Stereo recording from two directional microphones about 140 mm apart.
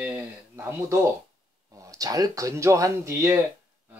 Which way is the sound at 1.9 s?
25° right (ahead or behind).